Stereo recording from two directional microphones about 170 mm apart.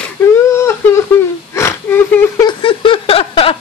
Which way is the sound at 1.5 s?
15° left (ahead or behind).